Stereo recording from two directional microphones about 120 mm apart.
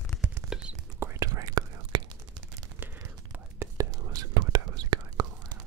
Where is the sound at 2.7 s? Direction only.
15° right (ahead or behind).